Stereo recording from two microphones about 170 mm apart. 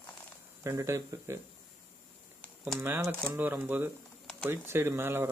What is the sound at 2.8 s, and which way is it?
Speech, 10° right (ahead or behind).